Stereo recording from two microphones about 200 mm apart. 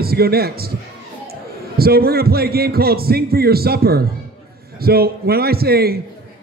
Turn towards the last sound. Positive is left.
turn(degrees=-50)  # may be behind; listen again after turning